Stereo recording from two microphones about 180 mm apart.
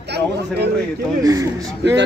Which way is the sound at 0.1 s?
65° right (ahead or behind).